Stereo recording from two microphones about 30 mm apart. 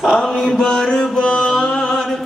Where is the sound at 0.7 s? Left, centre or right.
Left.